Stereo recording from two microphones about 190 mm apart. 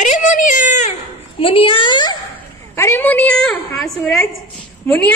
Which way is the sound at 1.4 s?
30° left (ahead or behind).